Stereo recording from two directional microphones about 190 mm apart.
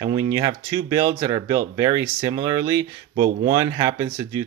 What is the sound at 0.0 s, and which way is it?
Speech, 20° right (ahead or behind).